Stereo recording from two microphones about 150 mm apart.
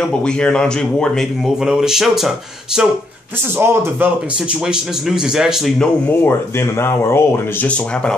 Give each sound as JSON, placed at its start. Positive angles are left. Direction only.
{"t": 0.2, "sound": "speech", "side_deg": 5}
{"t": 3.5, "sound": "a man's voice", "side_deg": -15}
{"t": 4.6, "sound": "speech", "side_deg": -5}
{"t": 6.2, "sound": "speech", "side_deg": 15}